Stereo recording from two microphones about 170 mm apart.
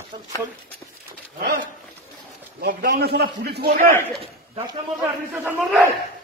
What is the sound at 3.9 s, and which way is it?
Speech, 15° left (ahead or behind).